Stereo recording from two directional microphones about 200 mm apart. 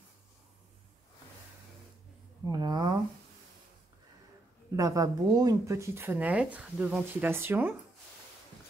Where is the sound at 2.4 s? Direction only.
20° right (ahead or behind).